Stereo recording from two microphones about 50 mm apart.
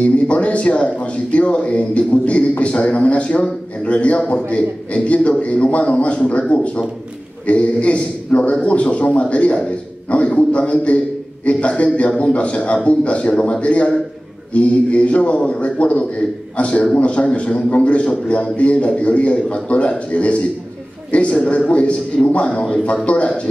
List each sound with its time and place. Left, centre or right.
0.0 s a man's voice: left